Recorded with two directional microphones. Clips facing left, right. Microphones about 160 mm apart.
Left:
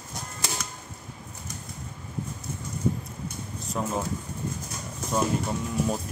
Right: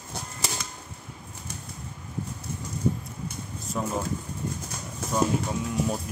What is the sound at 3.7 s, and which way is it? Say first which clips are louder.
Speech: even; centre (ahead or behind).